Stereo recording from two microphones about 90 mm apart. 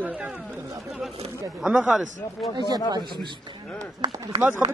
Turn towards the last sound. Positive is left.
turn(degrees=-45)  # may be behind; listen again after turning